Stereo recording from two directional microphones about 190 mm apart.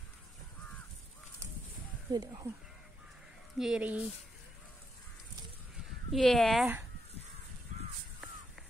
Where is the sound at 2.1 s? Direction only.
20° right (ahead or behind).